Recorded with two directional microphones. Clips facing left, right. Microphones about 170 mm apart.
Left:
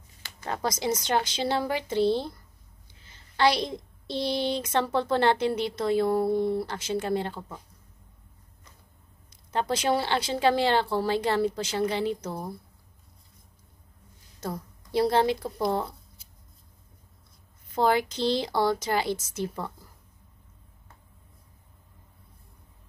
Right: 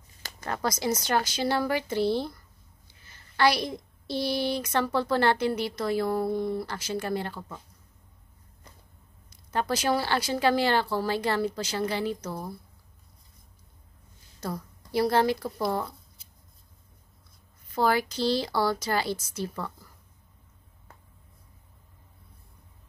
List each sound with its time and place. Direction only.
0.5 s a woman's voice: 20° left (ahead or behind)
9.3 s speech: 25° left (ahead or behind)
14.9 s speech: 20° left (ahead or behind)
17.7 s speech: 20° left (ahead or behind)